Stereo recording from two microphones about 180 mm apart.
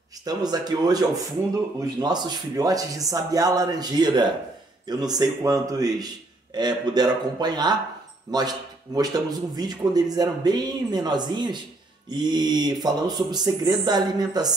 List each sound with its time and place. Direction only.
0.2 s speech: 20° right (ahead or behind)